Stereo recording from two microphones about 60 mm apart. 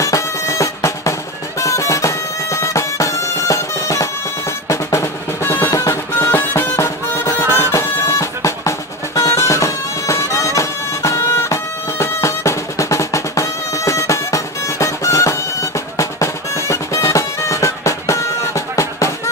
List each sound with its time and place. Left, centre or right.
0.0 s music: left
5.0 s drum roll: left
5.7 s music: left
6.3 s music: left
7.7 s drum: left
10.4 s bagpipes: left